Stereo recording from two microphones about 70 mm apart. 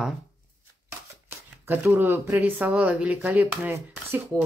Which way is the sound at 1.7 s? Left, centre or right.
Right.